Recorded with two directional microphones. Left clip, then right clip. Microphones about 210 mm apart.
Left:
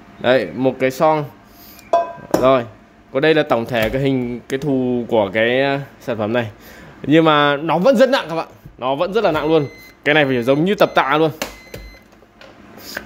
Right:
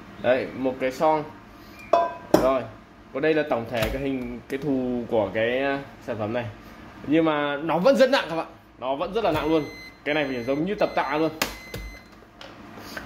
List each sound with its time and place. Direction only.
0.2 s a man's voice: 55° left (ahead or behind)
3.1 s a man's voice: 55° left (ahead or behind); by 8.5 s 35° left (ahead or behind)
8.7 s a man's voice: 55° left (ahead or behind)
13.0 s a sound: 60° left (ahead or behind)